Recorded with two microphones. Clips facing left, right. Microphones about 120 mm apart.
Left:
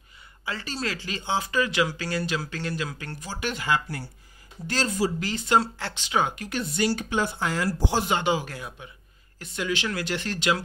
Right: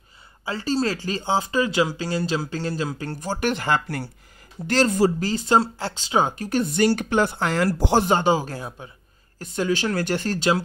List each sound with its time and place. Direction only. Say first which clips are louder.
0.5 s speech: right 8 dB; 30° right (ahead or behind); by 5.1 s 50° right (ahead or behind)
5.2 s speech: right 3 dB; 35° right (ahead or behind)
6.6 s speech: right 5 dB; 50° right (ahead or behind)
8.1 s speech: right 5 dB; 40° right (ahead or behind)